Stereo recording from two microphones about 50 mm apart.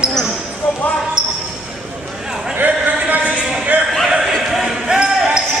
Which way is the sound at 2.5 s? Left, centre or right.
Right.